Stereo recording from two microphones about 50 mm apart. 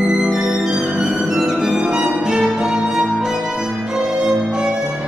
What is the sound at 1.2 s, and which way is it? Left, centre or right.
Violin, centre.